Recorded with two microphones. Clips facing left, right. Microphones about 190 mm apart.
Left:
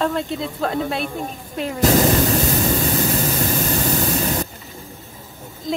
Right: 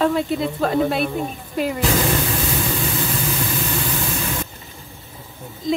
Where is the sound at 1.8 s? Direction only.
45° left (ahead or behind).